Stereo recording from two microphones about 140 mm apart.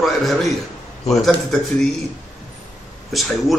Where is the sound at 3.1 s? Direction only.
Centre (ahead or behind).